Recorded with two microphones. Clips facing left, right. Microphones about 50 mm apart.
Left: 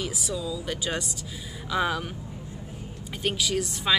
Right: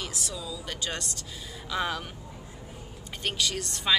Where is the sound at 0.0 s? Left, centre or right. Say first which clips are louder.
Left 5 dB; centre.